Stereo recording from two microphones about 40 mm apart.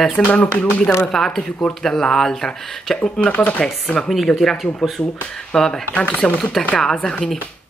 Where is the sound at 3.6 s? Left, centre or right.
Left.